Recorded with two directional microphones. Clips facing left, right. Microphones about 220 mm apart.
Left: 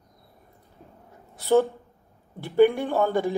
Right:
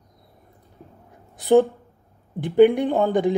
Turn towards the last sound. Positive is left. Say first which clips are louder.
# right 4 dB
turn(degrees=-15)  # may be behind; listen again after turning